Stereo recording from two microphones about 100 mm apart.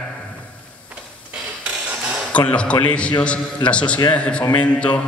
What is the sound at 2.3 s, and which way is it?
A man's voice, 10° left (ahead or behind).